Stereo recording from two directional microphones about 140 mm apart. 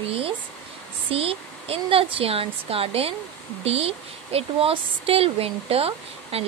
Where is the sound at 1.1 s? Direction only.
45° right (ahead or behind).